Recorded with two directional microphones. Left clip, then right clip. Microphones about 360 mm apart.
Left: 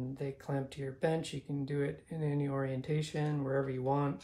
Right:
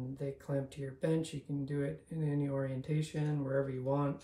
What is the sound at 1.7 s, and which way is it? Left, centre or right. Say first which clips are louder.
Speech: left 3 dB; centre.